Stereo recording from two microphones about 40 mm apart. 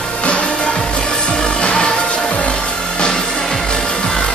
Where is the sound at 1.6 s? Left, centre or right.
Left.